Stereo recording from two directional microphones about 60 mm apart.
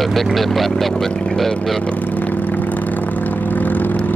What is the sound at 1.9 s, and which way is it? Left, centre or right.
Vehicle, left.